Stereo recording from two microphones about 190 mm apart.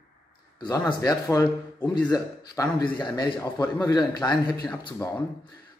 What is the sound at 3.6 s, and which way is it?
Speech, 10° left (ahead or behind).